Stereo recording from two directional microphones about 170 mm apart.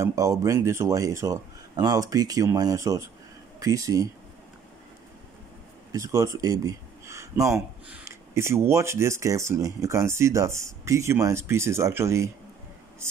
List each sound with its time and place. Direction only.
0.0 s speech: 20° right (ahead or behind)
5.9 s speech: 20° right (ahead or behind)
7.4 s speech: centre (ahead or behind)
8.0 s speech: 15° right (ahead or behind)